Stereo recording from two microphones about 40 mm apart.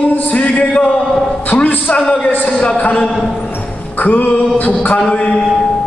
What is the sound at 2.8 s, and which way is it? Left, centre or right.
Music, left.